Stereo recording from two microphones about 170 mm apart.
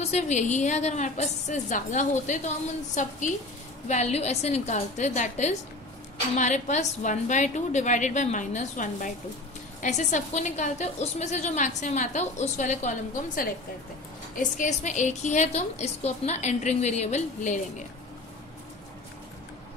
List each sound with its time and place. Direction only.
0.0 s a woman's voice: 40° left (ahead or behind)
14.6 s a woman's voice: 45° left (ahead or behind)